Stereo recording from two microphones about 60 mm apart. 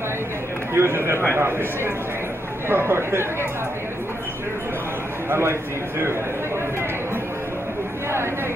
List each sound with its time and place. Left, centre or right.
0.7 s a man's voice: right
5.3 s a man's voice: right